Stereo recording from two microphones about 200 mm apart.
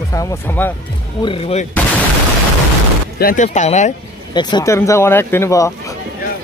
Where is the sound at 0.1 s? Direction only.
15° left (ahead or behind).